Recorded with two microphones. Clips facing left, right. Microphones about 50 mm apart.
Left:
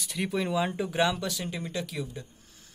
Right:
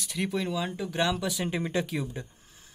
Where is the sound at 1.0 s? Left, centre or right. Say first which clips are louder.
Left 1 dB; centre.